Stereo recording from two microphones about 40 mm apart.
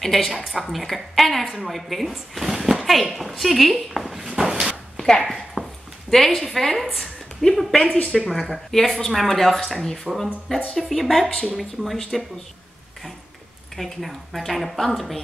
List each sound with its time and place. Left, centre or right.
0.0 s a woman's voice: centre
4.4 s a sound: centre
4.9 s a sound: centre
6.0 s a woman's voice: centre
11.2 s speech: left
11.5 s a woman's voice: centre
13.7 s a woman's voice: centre